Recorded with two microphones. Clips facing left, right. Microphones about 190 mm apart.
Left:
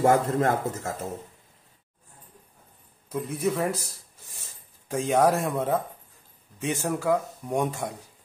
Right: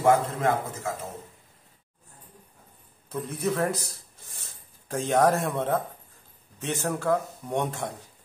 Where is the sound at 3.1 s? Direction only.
10° left (ahead or behind).